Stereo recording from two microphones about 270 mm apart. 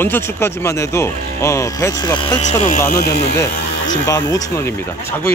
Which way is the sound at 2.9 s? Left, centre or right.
Left.